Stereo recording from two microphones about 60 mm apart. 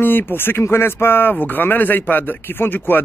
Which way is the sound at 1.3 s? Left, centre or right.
Left.